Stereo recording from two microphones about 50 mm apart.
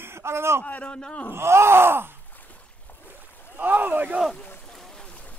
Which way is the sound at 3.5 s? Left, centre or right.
Right.